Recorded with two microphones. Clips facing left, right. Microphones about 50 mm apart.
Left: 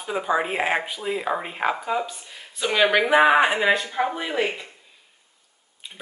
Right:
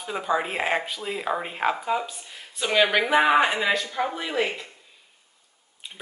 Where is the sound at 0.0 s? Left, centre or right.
Centre.